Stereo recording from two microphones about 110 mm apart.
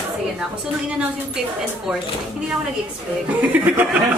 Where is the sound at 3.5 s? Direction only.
15° right (ahead or behind).